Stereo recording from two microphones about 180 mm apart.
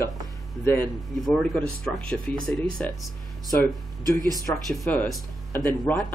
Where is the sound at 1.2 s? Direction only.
Centre (ahead or behind).